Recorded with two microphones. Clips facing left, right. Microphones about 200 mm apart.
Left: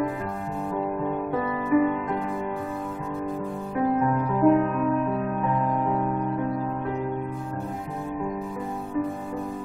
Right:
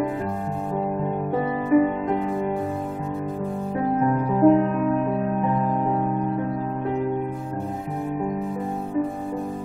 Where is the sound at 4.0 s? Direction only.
30° right (ahead or behind).